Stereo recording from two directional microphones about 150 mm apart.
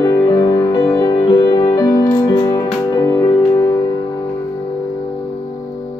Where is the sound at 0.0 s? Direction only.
25° left (ahead or behind).